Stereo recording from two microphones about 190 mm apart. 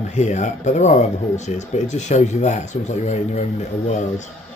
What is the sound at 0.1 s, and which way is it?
Speech, 35° left (ahead or behind).